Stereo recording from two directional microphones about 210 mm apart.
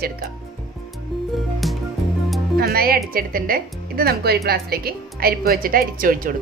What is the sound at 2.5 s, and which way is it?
Speech, 45° right (ahead or behind).